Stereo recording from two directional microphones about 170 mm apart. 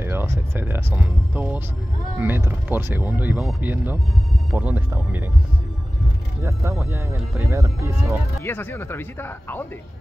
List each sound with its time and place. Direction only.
0.0 s speech: 15° right (ahead or behind)
6.7 s speech: 5° right (ahead or behind)
8.4 s speech: 10° left (ahead or behind)